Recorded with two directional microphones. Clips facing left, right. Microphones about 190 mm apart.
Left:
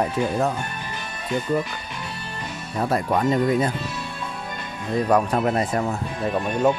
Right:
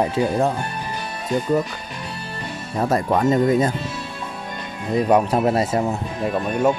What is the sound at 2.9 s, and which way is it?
Speech, 45° right (ahead or behind).